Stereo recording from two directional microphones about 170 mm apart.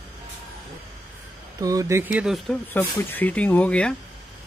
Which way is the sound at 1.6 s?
20° right (ahead or behind).